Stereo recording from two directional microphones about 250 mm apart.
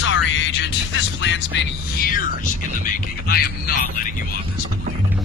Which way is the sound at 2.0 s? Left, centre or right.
Left.